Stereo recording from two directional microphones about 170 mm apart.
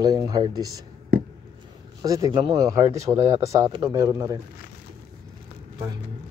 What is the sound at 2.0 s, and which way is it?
Speech, 20° right (ahead or behind).